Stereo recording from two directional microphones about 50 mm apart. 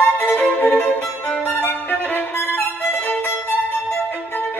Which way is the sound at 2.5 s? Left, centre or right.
Left.